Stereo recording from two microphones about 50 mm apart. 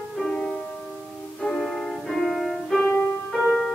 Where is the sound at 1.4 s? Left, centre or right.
Centre.